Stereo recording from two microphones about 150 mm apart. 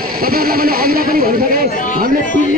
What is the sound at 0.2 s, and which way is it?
A man's voice, 80° right.